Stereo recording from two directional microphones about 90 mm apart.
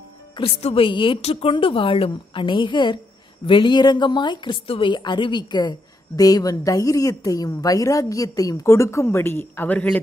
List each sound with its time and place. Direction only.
0.4 s a woman's voice: 80° left; by 9.8 s 20° left (ahead or behind)